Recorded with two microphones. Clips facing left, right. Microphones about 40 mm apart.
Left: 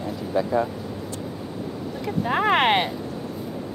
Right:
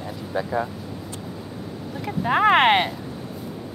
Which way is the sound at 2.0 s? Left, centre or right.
Centre.